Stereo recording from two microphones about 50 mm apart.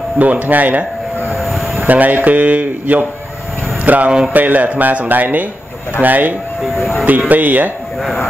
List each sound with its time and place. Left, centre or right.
0.2 s speech: right
1.3 s vehicle: centre
1.9 s speech: right
8.0 s speech: centre